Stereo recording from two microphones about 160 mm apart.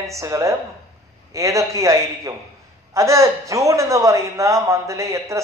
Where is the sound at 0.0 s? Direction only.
20° right (ahead or behind).